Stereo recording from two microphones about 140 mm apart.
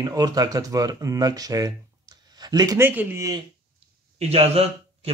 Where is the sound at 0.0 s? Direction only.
25° right (ahead or behind).